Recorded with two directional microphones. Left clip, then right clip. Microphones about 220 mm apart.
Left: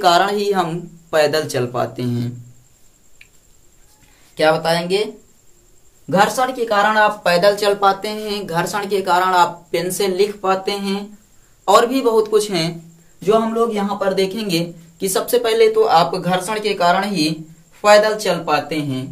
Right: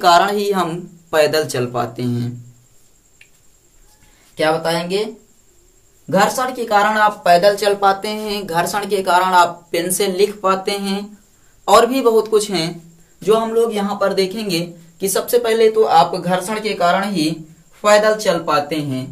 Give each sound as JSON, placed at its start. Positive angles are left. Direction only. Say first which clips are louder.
{"t": 0.0, "sound": "speech", "louder": "right 2 dB", "side_deg": 5}
{"t": 4.4, "sound": "speech", "louder": "left 2 dB", "side_deg": 30}
{"t": 6.0, "sound": "speech", "louder": "even", "side_deg": 30}
{"t": 13.8, "sound": "speech", "louder": "right 1 dB", "side_deg": 10}